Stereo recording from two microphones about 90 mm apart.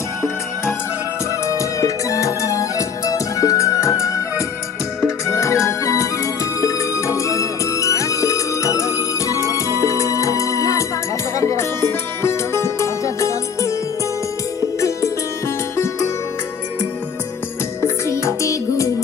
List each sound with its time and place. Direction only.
1.5 s music: 35° left (ahead or behind)
17.8 s music: 30° left (ahead or behind)